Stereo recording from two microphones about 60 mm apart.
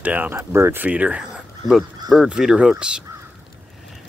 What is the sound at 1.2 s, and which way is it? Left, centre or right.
Dog, centre.